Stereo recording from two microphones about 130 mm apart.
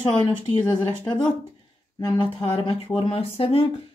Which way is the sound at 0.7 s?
40° left (ahead or behind).